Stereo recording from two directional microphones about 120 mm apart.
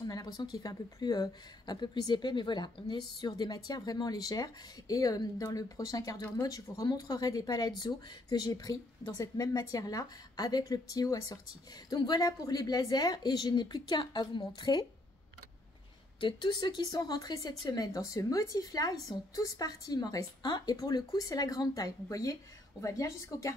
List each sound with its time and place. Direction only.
0.0 s speech: 35° left (ahead or behind)
16.2 s speech: 40° left (ahead or behind); by 23.5 s 25° left (ahead or behind)